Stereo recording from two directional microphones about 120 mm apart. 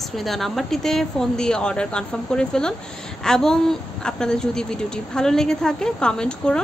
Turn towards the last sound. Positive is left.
turn(degrees=5)  # may be behind; listen again after turning